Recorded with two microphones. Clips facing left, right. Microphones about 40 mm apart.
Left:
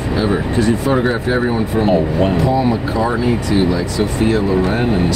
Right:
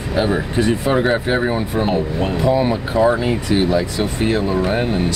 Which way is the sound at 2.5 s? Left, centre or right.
Right.